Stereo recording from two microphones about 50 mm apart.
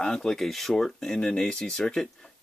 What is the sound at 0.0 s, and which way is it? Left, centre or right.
Speech, centre.